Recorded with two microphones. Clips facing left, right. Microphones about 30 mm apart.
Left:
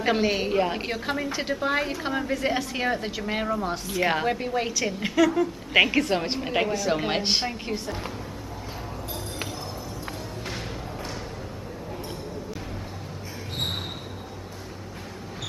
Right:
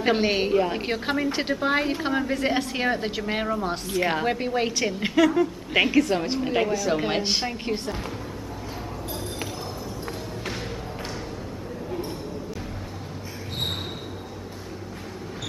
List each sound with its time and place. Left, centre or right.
0.2 s a woman's voice: centre
0.5 s a woman's voice: centre
0.8 s a woman's voice: centre
3.9 s a woman's voice: centre
4.3 s a woman's voice: centre
5.7 s a woman's voice: centre
5.9 s a woman's voice: centre
7.6 s a woman's voice: right